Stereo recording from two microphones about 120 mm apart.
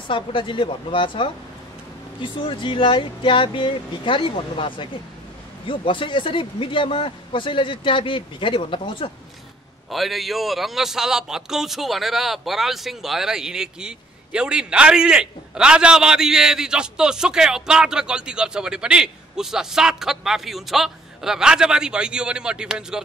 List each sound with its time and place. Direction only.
0.1 s speech: 45° left (ahead or behind)
9.8 s a man's voice: centre (ahead or behind)